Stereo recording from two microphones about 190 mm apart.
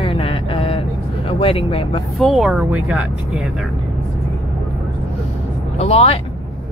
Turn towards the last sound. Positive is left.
turn(degrees=30)  # may be behind; listen again after turning